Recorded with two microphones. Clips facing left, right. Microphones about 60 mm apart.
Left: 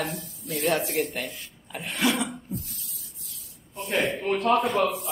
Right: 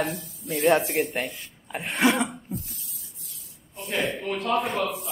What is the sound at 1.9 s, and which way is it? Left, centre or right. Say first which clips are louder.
Cough: right 3 dB; right.